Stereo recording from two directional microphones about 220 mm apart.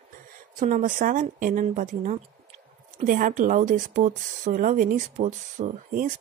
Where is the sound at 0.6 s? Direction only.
35° right (ahead or behind).